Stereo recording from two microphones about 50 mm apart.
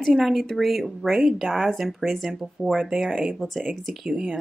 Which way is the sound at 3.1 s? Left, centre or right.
Right.